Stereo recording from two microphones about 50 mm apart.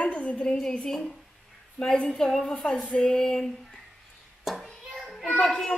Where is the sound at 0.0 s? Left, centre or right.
Left.